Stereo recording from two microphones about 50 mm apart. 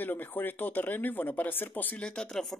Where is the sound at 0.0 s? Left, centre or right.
Left.